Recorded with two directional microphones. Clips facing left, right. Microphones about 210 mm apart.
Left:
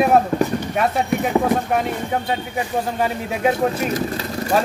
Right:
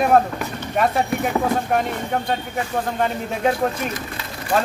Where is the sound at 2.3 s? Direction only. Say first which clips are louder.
Left 1 dB; 5° left (ahead or behind).